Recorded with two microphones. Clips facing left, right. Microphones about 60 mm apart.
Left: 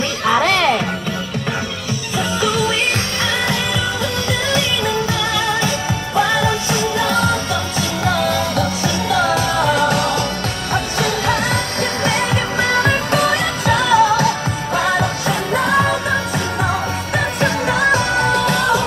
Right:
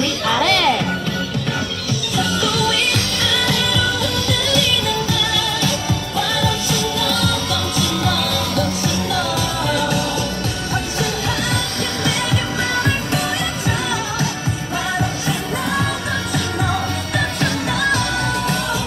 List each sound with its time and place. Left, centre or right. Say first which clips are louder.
0.2 s music: left 3 dB; left
2.1 s music: left 2 dB; left
17.4 s music: left 6 dB; left